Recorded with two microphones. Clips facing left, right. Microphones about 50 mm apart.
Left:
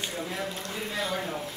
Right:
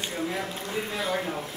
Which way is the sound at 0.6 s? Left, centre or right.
Centre.